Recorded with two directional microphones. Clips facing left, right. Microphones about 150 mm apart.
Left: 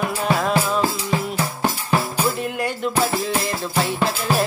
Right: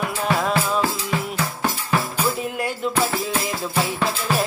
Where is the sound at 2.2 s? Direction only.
Centre (ahead or behind).